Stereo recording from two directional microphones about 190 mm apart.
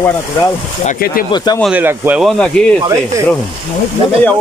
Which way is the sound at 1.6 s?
10° right (ahead or behind).